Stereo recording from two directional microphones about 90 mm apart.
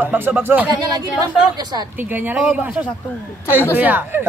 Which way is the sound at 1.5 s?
50° right (ahead or behind).